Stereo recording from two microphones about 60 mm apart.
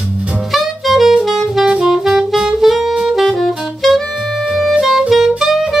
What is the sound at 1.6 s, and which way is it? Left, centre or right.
Saxophone, centre.